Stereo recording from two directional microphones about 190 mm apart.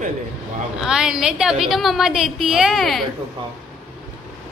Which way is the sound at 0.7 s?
5° right (ahead or behind).